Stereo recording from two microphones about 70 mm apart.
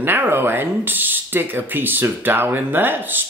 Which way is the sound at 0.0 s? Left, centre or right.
Right.